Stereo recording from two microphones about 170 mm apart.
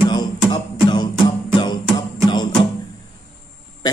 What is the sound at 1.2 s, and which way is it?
Music, 25° left (ahead or behind).